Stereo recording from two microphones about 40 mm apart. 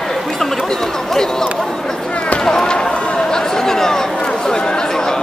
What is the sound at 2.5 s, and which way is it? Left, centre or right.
Run, centre.